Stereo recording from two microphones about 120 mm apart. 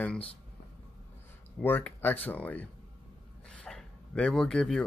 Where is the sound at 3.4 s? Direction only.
5° left (ahead or behind).